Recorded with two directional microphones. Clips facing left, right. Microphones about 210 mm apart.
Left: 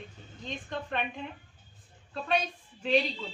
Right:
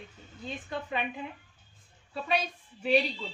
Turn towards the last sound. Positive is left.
turn(degrees=-10)  # may be behind; listen again after turning